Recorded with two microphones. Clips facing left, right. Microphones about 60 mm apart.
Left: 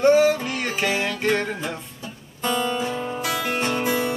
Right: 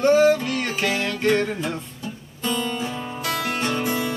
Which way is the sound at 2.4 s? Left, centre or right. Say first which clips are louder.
Left 2 dB; left.